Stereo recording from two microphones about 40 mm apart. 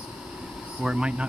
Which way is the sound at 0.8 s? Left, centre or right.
Right.